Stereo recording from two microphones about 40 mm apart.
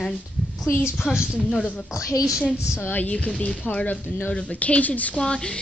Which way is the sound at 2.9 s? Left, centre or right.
Left.